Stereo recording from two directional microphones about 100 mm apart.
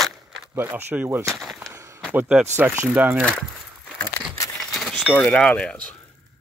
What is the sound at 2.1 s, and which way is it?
Speech, 15° right (ahead or behind).